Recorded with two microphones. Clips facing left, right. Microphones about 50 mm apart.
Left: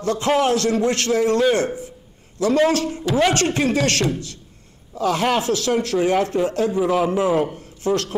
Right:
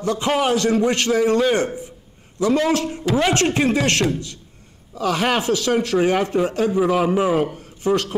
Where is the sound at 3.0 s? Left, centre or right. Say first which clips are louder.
Left 2 dB; centre.